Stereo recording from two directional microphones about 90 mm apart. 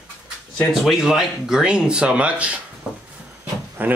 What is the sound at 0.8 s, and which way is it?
Speech, 5° right (ahead or behind).